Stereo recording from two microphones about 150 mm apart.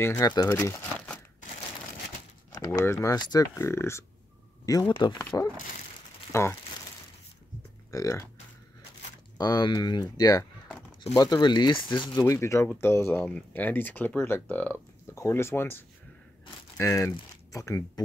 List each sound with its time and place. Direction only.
0.0 s speech: 15° left (ahead or behind)
2.5 s typing: 25° left (ahead or behind)
2.8 s speech: 20° left (ahead or behind)
4.6 s speech: 30° left (ahead or behind)
7.9 s speech: 20° left (ahead or behind)
9.4 s speech: 25° left (ahead or behind)